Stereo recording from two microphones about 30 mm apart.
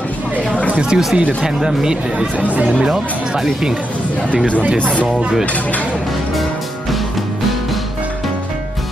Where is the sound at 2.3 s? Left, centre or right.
Right.